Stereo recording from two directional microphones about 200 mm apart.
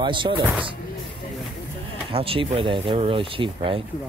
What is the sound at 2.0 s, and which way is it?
Speech, 25° right (ahead or behind).